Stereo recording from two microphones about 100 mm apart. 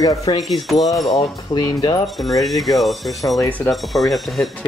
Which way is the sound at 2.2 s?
Centre (ahead or behind).